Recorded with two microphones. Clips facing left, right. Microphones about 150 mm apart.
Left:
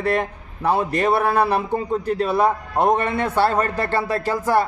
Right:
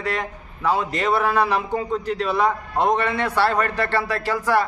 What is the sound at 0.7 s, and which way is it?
A man's voice, 55° left (ahead or behind).